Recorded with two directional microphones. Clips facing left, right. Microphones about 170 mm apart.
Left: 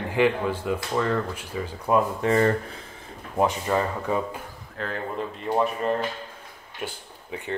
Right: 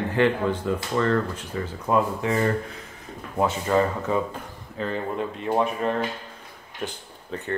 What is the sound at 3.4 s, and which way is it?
Speech, 15° left (ahead or behind).